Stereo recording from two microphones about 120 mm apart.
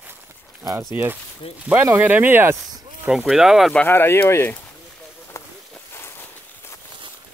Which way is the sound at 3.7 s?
15° left (ahead or behind).